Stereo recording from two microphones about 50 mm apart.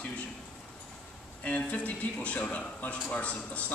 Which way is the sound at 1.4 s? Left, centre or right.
Left.